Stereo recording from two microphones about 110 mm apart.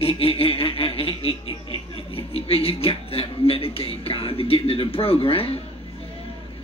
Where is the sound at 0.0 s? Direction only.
60° left (ahead or behind).